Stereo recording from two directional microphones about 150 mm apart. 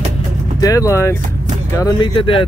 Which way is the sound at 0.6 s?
20° left (ahead or behind).